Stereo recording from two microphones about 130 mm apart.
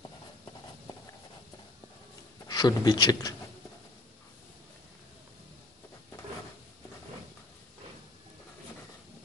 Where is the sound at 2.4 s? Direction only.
30° left (ahead or behind).